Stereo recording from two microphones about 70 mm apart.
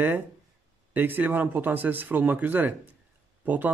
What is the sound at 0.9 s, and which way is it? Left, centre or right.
Speech, right.